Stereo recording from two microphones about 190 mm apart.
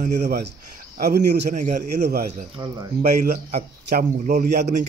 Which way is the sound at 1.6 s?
40° right (ahead or behind).